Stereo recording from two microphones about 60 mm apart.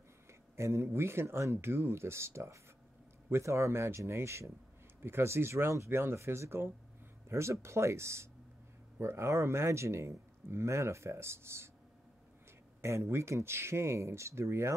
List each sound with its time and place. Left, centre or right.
0.3 s speech: right
12.8 s speech: right